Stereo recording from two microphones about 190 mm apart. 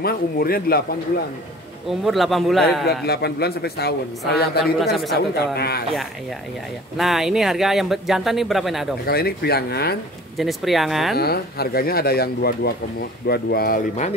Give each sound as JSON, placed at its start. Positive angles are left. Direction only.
{"t": 0.0, "sound": "speech", "side_deg": 50}
{"t": 1.9, "sound": "speech", "side_deg": 0}
{"t": 3.1, "sound": "speech", "side_deg": 60}
{"t": 7.0, "sound": "speech", "side_deg": 0}
{"t": 9.0, "sound": "speech", "side_deg": 55}
{"t": 10.3, "sound": "speech", "side_deg": 0}
{"t": 11.1, "sound": "speech", "side_deg": 55}